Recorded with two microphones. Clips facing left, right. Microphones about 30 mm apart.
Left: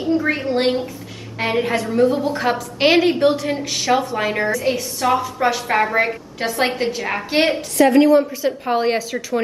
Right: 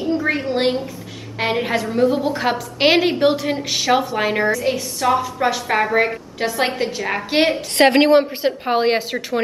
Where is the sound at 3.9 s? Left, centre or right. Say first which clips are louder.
Even; right.